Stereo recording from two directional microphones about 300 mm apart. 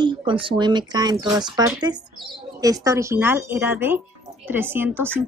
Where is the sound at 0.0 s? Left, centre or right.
Centre.